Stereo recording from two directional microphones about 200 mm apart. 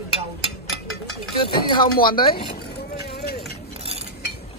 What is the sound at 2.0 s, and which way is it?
Speech, 25° left (ahead or behind).